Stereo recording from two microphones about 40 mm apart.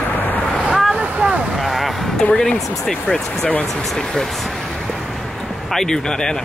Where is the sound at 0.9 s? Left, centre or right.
Right.